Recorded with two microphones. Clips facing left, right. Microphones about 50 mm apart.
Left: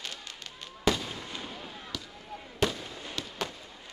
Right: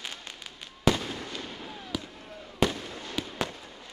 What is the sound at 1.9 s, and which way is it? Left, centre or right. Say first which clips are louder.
Fireworks: right 7 dB; centre.